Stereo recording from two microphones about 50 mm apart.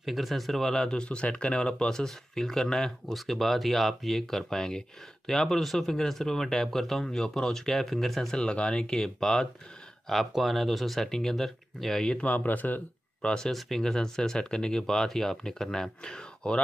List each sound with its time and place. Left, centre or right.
0.0 s speech: centre; by 8.9 s left
8.9 s speech: centre
10.0 s speech: centre
12.1 s speech: left
13.2 s speech: centre
13.5 s speech: centre